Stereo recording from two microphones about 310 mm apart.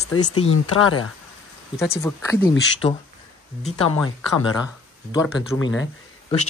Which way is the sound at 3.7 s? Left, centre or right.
Left.